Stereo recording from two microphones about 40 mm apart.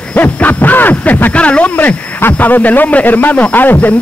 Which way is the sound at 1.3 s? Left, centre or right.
Left.